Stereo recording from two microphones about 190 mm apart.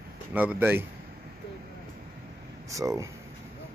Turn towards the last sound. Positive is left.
turn(degrees=-15)  # may be behind; listen again after turning